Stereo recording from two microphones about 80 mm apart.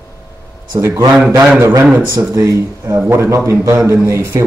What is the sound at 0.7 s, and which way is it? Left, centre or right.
Speech, right.